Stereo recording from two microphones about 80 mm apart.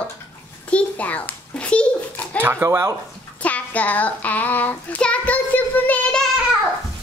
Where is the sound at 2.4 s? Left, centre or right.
Right.